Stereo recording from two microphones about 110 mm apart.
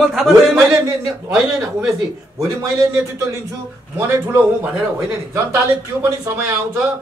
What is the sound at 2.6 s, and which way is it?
A man's voice, 25° right (ahead or behind).